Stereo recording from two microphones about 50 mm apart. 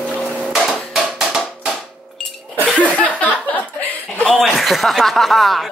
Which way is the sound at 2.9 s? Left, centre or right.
Left.